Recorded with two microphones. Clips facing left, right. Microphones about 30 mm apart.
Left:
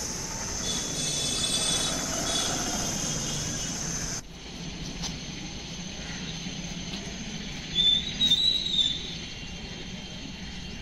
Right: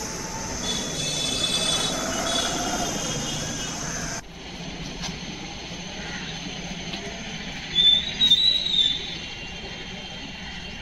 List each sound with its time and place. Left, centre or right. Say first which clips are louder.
0.7 s train: right 4 dB; centre
1.9 s train: right 4 dB; centre
7.7 s train: right 5 dB; right